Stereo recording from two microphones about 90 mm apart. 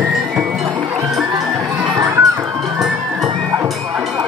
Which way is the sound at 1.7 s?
35° right (ahead or behind).